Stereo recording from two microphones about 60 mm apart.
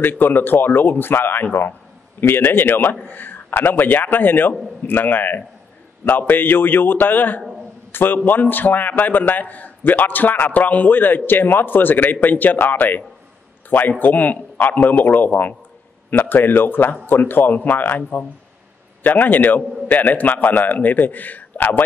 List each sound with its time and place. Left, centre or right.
0.0 s a man's voice: left